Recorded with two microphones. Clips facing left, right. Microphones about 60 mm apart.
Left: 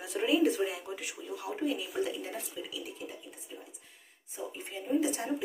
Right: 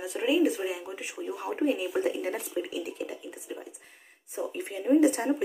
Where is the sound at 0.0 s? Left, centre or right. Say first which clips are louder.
Right 2 dB; centre.